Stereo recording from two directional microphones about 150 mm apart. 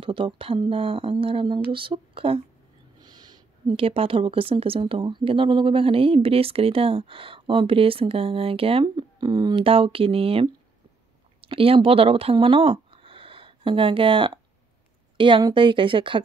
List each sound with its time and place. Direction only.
0.0 s a woman's voice: 35° right (ahead or behind)